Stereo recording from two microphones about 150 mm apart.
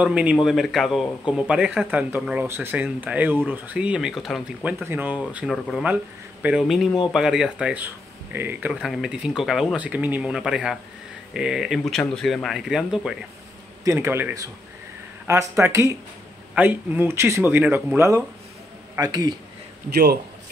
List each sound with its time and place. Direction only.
0.0 s speech: 10° right (ahead or behind)
4.8 s speech: 10° right (ahead or behind)
13.8 s a man's voice: 15° right (ahead or behind)
19.9 s a man's voice: 90° right